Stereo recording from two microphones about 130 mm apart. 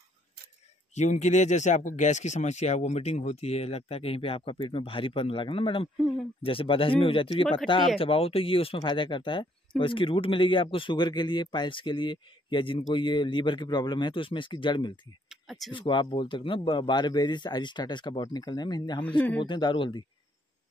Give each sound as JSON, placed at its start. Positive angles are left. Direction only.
{"t": 0.9, "sound": "speech", "side_deg": 60}
{"t": 15.2, "sound": "a sound", "side_deg": 0}
{"t": 15.7, "sound": "speech", "side_deg": 35}
{"t": 19.0, "sound": "speech", "side_deg": 10}
{"t": 19.4, "sound": "speech", "side_deg": 35}